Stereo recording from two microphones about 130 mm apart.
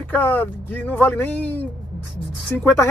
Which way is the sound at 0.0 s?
15° left (ahead or behind).